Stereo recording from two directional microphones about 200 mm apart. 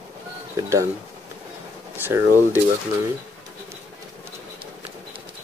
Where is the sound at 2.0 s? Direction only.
10° right (ahead or behind).